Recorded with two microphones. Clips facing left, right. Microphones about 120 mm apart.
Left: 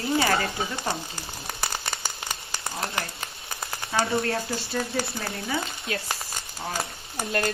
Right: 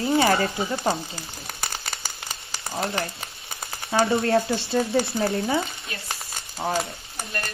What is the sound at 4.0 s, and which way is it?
Speech, 25° right (ahead or behind).